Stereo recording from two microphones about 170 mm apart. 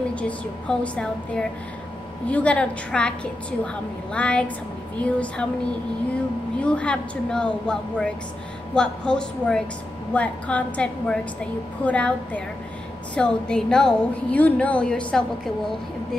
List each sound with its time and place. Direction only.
0.1 s a woman's voice: 5° left (ahead or behind)
6.6 s a woman's voice: 5° left (ahead or behind)